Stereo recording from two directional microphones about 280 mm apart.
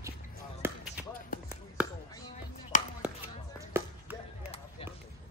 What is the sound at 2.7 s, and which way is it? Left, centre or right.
Chop, left.